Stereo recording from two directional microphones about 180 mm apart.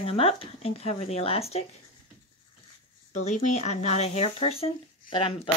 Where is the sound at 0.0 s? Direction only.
30° left (ahead or behind).